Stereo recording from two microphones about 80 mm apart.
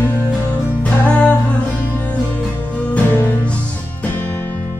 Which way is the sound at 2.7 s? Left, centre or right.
Left.